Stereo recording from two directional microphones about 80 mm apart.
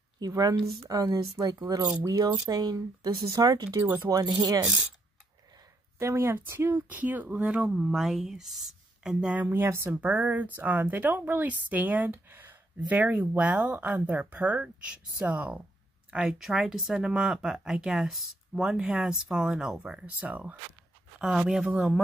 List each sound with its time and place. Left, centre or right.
0.2 s speech: right
5.9 s speech: right; by 9.1 s centre
9.1 s speech: centre
16.1 s speech: centre
21.2 s speech: centre